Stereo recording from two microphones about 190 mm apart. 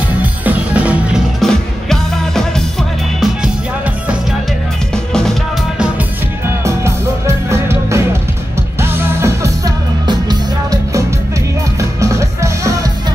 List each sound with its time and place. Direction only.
0.2 s music: 10° right (ahead or behind)
4.9 s music: 5° left (ahead or behind)
6.6 s music: 15° right (ahead or behind)